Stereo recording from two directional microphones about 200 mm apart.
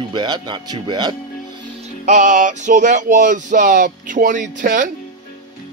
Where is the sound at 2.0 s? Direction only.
35° right (ahead or behind).